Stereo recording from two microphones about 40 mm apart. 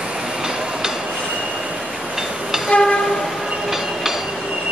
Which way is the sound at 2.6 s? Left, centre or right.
Left.